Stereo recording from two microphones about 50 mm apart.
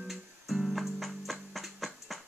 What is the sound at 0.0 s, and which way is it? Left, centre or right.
Music, centre.